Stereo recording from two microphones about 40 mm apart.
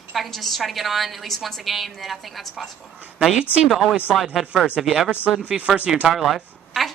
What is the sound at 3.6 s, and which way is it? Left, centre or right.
A woman's voice, centre.